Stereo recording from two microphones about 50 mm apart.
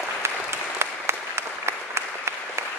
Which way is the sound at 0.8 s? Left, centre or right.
Right.